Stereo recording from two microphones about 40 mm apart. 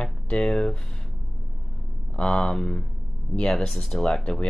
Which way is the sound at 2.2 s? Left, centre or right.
Left.